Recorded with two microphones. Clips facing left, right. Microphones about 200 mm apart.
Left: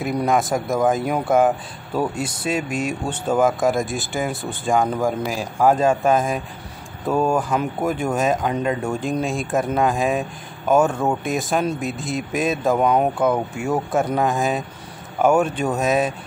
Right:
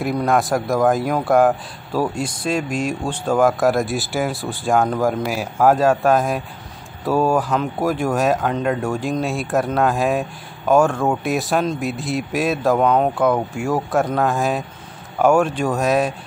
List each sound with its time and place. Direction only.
0.0 s speech: centre (ahead or behind)